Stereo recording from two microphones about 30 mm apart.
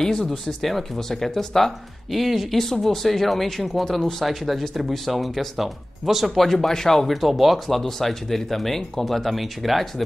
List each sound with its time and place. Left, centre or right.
0.0 s speech: centre
2.5 s speech: centre
6.4 s speech: centre
7.1 s speech: centre